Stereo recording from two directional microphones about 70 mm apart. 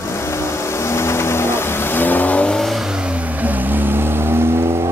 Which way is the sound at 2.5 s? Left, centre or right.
Centre.